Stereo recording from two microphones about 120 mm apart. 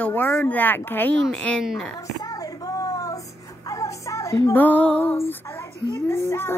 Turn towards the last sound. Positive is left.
turn(degrees=20)  # may be behind; listen again after turning